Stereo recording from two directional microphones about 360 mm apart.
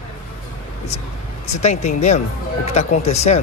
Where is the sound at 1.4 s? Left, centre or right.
Centre.